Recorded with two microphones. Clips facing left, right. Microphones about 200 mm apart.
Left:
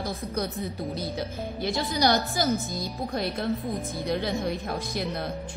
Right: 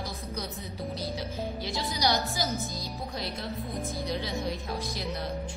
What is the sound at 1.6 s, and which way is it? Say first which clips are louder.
Speech: left 6 dB; 50° left (ahead or behind).